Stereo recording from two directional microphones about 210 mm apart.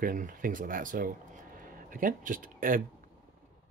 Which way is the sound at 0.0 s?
40° right (ahead or behind).